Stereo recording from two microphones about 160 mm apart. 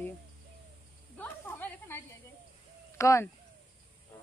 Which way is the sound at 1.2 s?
15° left (ahead or behind).